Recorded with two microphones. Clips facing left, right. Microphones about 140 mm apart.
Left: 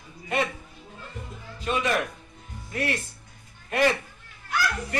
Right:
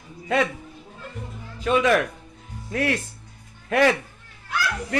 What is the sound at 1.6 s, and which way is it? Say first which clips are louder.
Speech: right 6 dB; 90° right.